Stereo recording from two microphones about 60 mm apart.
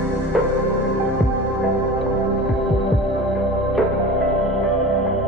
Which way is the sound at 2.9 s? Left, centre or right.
Centre.